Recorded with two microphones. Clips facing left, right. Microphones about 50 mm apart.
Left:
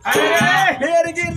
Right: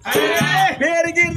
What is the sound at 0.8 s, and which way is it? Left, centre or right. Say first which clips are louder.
Speech: right 1 dB; right.